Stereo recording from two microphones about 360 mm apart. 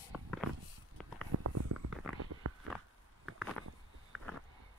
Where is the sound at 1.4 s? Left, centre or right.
Right.